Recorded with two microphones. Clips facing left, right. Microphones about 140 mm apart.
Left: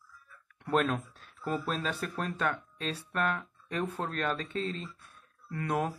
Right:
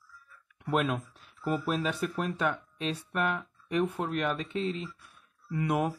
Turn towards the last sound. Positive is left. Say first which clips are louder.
# right 3 dB
turn(degrees=-10)  # may be behind; listen again after turning